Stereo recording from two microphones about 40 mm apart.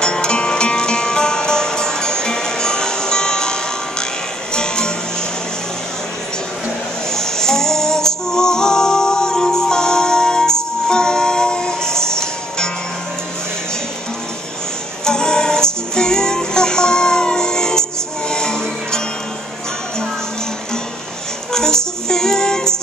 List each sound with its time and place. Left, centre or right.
0.0 s music: left
4.6 s music: centre
7.2 s music: centre
15.0 s music: centre
21.5 s music: centre